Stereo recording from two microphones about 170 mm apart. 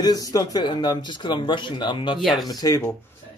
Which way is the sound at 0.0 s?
20° left (ahead or behind).